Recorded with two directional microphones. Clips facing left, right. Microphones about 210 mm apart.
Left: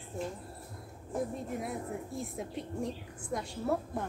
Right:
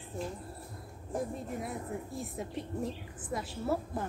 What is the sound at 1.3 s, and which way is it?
A woman's voice, centre (ahead or behind).